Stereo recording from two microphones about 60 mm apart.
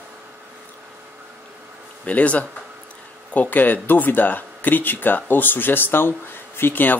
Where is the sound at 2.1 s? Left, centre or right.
Left.